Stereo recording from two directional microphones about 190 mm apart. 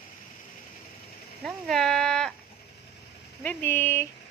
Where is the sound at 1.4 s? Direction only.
Centre (ahead or behind).